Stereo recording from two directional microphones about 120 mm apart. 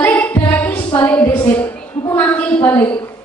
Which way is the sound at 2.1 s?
15° left (ahead or behind).